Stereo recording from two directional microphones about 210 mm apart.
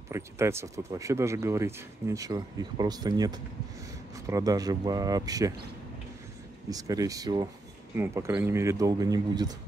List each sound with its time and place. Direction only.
0.1 s speech: 10° right (ahead or behind)
6.7 s speech: 15° right (ahead or behind)